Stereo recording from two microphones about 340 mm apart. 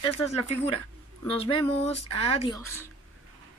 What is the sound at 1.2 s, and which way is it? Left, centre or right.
Speech, centre.